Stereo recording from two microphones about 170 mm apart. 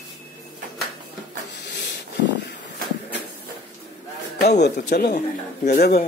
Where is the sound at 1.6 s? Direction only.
90° left.